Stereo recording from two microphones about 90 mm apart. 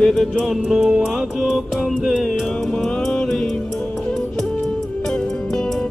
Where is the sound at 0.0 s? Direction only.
5° left (ahead or behind).